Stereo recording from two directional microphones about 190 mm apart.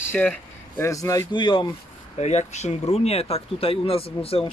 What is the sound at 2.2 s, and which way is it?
Speech, 35° left (ahead or behind).